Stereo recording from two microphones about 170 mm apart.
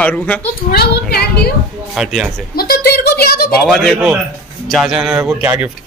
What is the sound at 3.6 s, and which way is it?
Speech, centre (ahead or behind).